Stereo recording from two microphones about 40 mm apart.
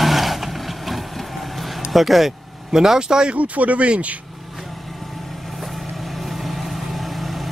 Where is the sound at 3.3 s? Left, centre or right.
Right.